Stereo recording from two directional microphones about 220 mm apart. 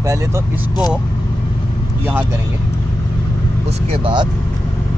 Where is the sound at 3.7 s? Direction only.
25° right (ahead or behind).